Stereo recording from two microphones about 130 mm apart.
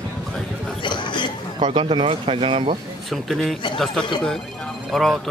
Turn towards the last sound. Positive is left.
turn(degrees=0)  # may be behind; listen again after turning